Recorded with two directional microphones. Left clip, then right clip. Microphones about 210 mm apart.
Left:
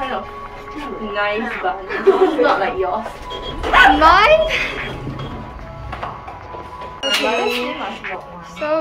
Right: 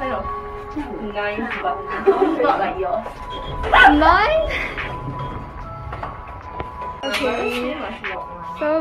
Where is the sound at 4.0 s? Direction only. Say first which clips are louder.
Left 4 dB; 5° left (ahead or behind).